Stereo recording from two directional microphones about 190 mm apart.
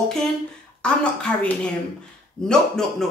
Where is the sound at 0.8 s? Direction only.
5° left (ahead or behind).